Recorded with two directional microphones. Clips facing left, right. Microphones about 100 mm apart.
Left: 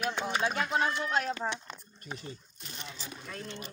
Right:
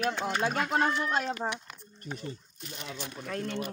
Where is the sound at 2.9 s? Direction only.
60° right (ahead or behind).